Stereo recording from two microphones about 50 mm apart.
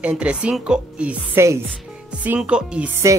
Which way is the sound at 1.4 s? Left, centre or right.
Right.